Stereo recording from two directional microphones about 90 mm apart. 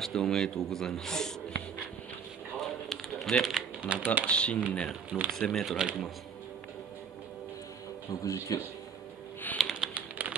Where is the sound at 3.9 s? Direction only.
10° right (ahead or behind).